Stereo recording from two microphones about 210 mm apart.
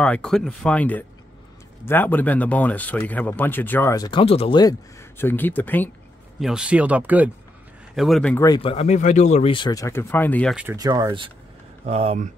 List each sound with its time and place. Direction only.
0.0 s speech: 5° left (ahead or behind)
6.4 s speech: 5° right (ahead or behind)
8.5 s speech: 30° left (ahead or behind); by 10.5 s 10° left (ahead or behind)
10.5 s speech: 5° right (ahead or behind)
10.8 s speech: 15° right (ahead or behind)